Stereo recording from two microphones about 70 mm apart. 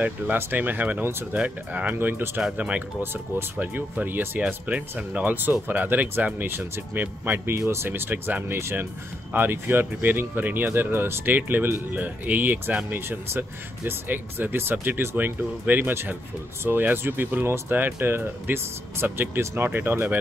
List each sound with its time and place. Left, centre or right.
0.0 s speech: right
2.4 s speech: centre
3.0 s speech: right
8.5 s speech: right